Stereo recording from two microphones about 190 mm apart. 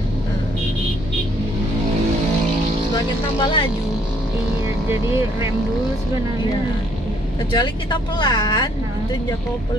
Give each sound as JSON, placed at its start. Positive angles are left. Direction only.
{"t": 3.3, "sound": "speech", "side_deg": 20}
{"t": 7.5, "sound": "speech", "side_deg": 25}